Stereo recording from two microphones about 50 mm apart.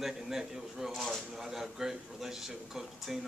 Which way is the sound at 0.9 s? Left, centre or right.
Centre.